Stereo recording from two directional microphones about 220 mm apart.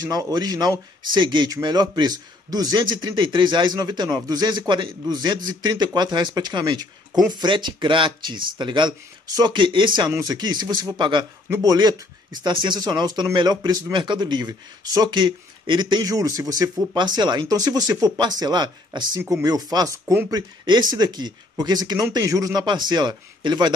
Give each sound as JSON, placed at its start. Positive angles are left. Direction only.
{"t": 0.0, "sound": "speech", "side_deg": -15}